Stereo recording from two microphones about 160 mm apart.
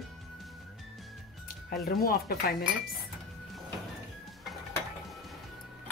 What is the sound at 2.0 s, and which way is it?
Speech, 75° left (ahead or behind).